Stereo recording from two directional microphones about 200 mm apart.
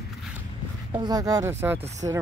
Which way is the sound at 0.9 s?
20° right (ahead or behind).